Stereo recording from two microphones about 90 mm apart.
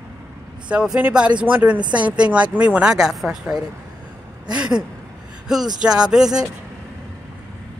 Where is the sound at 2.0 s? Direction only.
15° right (ahead or behind).